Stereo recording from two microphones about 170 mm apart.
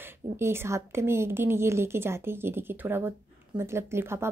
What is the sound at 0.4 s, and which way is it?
Speech, 15° right (ahead or behind).